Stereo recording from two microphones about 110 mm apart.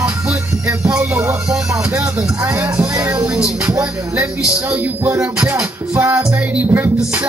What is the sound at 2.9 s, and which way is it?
Music, 30° right (ahead or behind).